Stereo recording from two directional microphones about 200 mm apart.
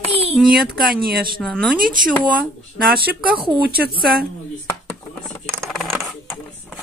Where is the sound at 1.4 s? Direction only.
5° left (ahead or behind).